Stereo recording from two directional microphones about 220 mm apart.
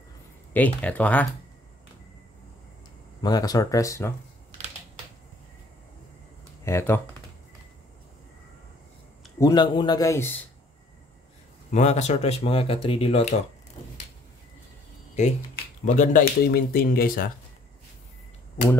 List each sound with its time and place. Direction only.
0.5 s a man's voice: 5° left (ahead or behind)
3.2 s a man's voice: 15° left (ahead or behind)
6.6 s a man's voice: 10° left (ahead or behind)
9.4 s a man's voice: 20° left (ahead or behind)
11.7 s speech: 30° left (ahead or behind)
15.1 s speech: 35° left (ahead or behind)